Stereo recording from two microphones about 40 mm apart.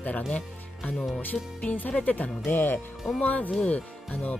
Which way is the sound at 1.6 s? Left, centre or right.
Left.